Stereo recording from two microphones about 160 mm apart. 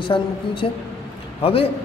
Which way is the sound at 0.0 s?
35° left (ahead or behind).